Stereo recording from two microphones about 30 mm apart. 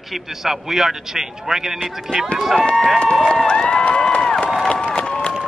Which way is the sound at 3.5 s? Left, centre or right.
Left.